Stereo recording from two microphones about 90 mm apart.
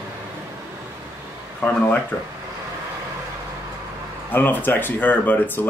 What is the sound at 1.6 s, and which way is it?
Speech, 20° left (ahead or behind).